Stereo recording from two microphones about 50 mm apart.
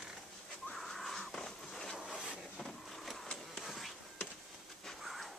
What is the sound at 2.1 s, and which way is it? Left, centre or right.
Train, centre.